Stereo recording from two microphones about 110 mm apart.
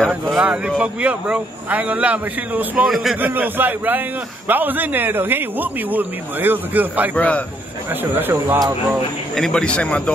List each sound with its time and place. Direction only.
0.4 s a man's voice: 10° right (ahead or behind)
2.9 s a man's voice: centre (ahead or behind)
3.2 s a man's voice: 15° right (ahead or behind)
7.2 s a man's voice: 10° left (ahead or behind)
7.9 s a man's voice: 20° right (ahead or behind)
9.3 s a man's voice: 5° left (ahead or behind)